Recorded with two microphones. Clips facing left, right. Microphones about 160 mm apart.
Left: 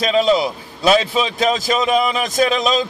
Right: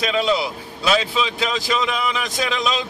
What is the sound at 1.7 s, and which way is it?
Speech, 45° left (ahead or behind).